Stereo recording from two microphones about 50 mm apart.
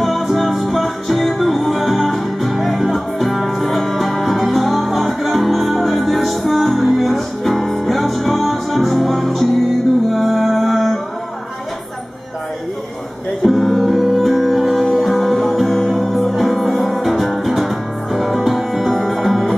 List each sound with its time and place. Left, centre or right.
0.0 s music: centre
13.4 s music: centre